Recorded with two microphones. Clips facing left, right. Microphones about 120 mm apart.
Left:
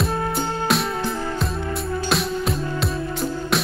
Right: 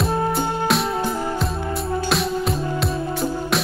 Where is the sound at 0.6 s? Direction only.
Centre (ahead or behind).